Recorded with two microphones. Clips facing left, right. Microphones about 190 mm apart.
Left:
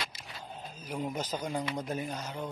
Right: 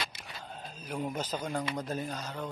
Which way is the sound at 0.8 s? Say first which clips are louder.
Even; 10° left (ahead or behind).